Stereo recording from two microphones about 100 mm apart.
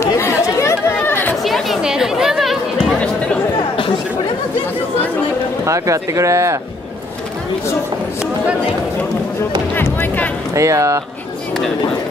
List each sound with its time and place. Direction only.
0.0 s chatter: 30° left (ahead or behind)
1.4 s chatter: centre (ahead or behind)
5.7 s speech: 30° right (ahead or behind)
9.8 s speech: 20° left (ahead or behind)
10.5 s speech: 30° right (ahead or behind)